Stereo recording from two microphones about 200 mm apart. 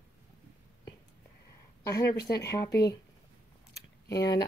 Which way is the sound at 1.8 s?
15° left (ahead or behind).